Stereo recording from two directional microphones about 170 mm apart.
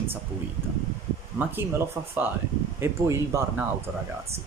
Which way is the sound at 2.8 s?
15° right (ahead or behind).